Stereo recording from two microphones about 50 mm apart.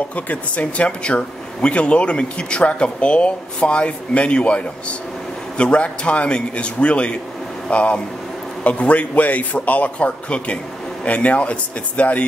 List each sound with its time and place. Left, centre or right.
0.1 s speech: left